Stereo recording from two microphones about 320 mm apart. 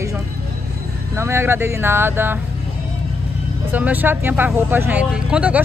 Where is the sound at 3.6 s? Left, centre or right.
Centre.